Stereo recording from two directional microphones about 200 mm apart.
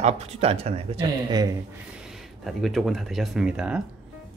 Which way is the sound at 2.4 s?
Centre (ahead or behind).